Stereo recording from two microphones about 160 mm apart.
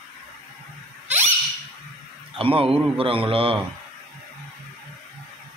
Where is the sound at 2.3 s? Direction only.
35° right (ahead or behind).